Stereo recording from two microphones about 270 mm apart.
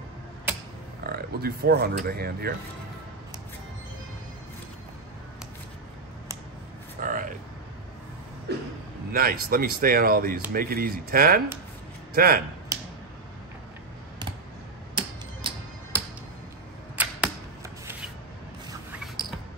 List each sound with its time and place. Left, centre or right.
1.0 s speech: right
7.0 s a sound: right
8.5 s a sound: right
9.1 s speech: right
15.0 s music: centre
16.9 s arrow: centre